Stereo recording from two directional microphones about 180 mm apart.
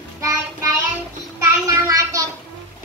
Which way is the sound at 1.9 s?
20° right (ahead or behind).